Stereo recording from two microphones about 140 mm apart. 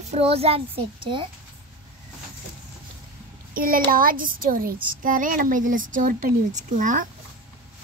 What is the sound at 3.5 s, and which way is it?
A child's voice, 90° right.